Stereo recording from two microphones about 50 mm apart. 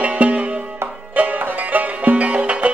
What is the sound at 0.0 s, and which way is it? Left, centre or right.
Music, right.